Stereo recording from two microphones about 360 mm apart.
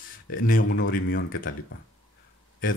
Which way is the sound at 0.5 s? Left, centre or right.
Left.